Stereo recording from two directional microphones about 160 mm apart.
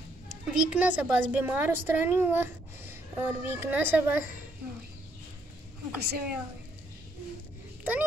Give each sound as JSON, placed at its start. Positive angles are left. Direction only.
{"t": 0.5, "sound": "a woman's voice", "side_deg": -5}
{"t": 5.9, "sound": "a woman's voice", "side_deg": -90}